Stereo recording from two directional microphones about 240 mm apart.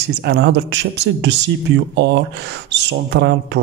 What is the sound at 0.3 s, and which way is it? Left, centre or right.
Speech, right.